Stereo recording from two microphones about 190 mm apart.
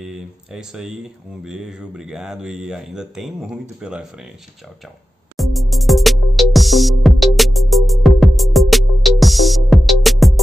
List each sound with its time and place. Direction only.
0.0 s speech: 5° right (ahead or behind)
5.4 s music: centre (ahead or behind)